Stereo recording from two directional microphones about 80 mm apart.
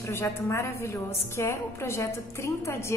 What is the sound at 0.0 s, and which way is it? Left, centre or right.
A woman's voice, left.